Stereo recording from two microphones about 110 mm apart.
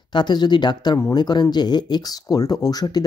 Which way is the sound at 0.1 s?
40° left (ahead or behind).